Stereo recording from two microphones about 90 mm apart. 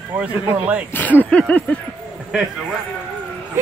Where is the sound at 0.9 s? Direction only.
20° left (ahead or behind).